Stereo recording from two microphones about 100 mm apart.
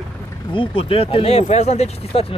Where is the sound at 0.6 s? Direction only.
65° left (ahead or behind); by 2.2 s 90° left.